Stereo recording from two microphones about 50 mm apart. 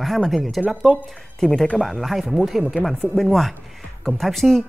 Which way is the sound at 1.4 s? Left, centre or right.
Centre.